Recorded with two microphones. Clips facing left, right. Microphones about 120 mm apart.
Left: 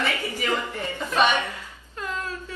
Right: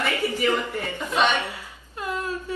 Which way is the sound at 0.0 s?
15° right (ahead or behind).